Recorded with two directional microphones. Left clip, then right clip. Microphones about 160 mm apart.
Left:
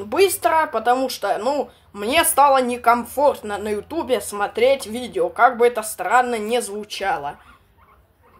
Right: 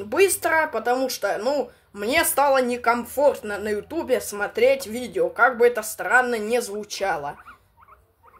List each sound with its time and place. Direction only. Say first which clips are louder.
0.0 s speech: left 3 dB; centre (ahead or behind)